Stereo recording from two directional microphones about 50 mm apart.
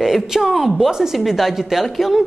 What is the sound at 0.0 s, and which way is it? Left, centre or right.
A woman's voice, centre.